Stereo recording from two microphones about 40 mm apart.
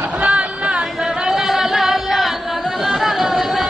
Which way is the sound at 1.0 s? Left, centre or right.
Centre.